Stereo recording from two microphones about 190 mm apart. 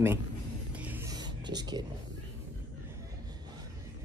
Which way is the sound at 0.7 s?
10° right (ahead or behind).